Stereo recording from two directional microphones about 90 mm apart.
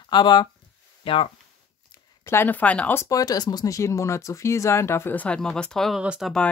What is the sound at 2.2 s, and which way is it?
Speech, 25° left (ahead or behind).